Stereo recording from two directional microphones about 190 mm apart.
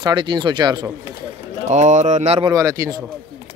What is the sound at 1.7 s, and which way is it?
Speech, 40° right (ahead or behind).